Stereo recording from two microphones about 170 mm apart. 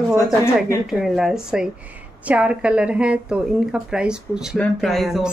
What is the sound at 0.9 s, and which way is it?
Speech, centre (ahead or behind).